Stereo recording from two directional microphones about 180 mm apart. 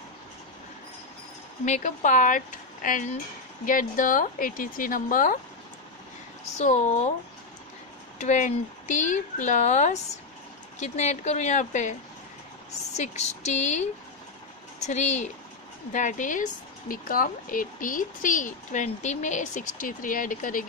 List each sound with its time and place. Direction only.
1.7 s speech: 45° left (ahead or behind)
6.6 s speech: 40° left (ahead or behind)
8.2 s speech: 40° left (ahead or behind)
12.9 s speech: 40° left (ahead or behind)